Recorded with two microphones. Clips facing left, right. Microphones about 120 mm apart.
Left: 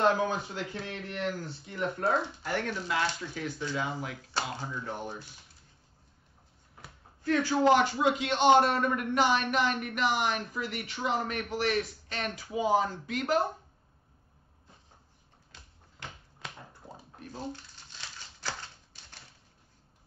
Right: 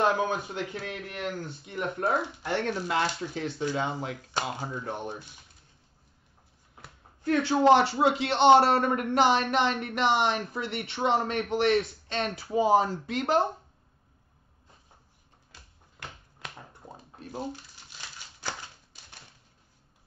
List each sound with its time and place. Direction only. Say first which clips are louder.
0.0 s speech: right 1 dB; 20° right (ahead or behind)
7.2 s speech: right 3 dB; 25° right (ahead or behind)
15.5 s a sound: right 1 dB; centre (ahead or behind)
18.4 s typewriter: right 2 dB; 15° right (ahead or behind)